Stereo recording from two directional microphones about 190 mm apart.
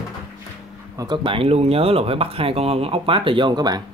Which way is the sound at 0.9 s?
25° right (ahead or behind).